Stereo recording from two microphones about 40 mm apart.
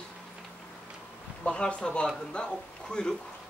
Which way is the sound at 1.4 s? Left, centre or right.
Left.